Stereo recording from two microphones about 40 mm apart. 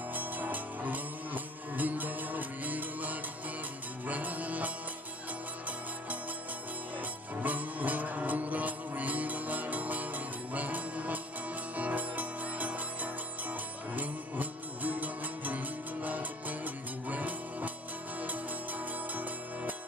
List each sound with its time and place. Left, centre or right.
0.1 s music: right
7.0 s music: right